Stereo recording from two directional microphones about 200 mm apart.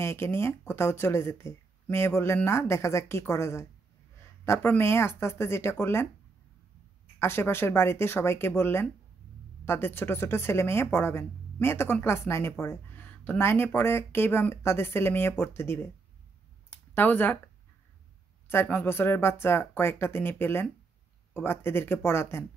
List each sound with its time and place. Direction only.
0.0 s speech: 10° left (ahead or behind)
7.2 s speech: 10° left (ahead or behind)
16.7 s a sound: 10° left (ahead or behind)
18.5 s speech: 10° left (ahead or behind)